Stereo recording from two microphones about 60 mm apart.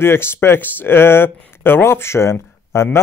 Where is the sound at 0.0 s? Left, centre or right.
Left.